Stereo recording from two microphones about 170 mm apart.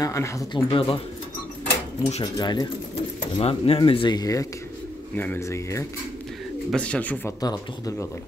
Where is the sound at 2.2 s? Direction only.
25° left (ahead or behind).